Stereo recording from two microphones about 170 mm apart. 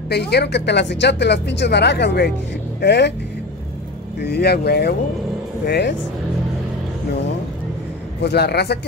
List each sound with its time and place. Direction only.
0.1 s speech: 75° left (ahead or behind)
4.2 s speech: 75° left (ahead or behind)
8.2 s speech: 75° left (ahead or behind)